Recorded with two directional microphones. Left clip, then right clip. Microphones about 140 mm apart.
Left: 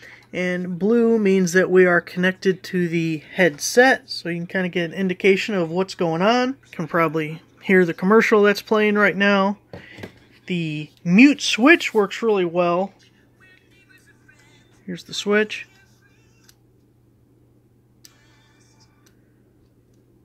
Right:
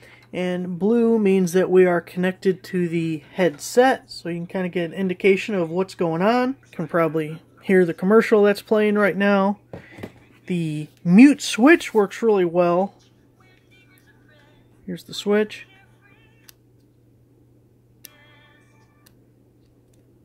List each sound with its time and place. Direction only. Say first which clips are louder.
0.0 s a sound: left 2 dB; 10° right (ahead or behind)
0.7 s speech: left 1 dB; 5° right (ahead or behind); by 12.8 s 25° right (ahead or behind)
14.9 s speech: even; 15° right (ahead or behind)